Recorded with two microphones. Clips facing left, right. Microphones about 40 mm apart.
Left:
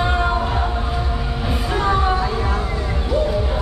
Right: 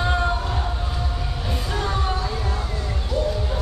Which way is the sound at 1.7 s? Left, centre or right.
Centre.